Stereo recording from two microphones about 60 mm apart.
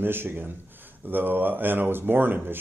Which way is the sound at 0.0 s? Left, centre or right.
Right.